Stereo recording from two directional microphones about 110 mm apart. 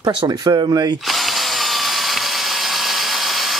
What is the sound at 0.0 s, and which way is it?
Speech, 40° right (ahead or behind).